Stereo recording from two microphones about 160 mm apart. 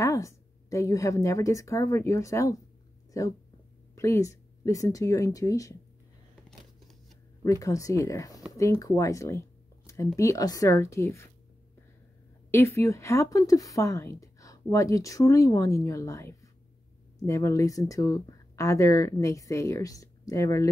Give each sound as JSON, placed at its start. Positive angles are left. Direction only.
{"t": 0.0, "sound": "speech", "side_deg": 20}
{"t": 7.4, "sound": "a woman's voice", "side_deg": 20}
{"t": 12.4, "sound": "a woman's voice", "side_deg": 15}